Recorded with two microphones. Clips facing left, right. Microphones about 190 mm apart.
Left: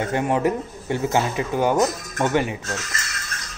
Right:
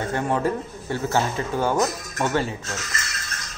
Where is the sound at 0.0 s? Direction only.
15° left (ahead or behind).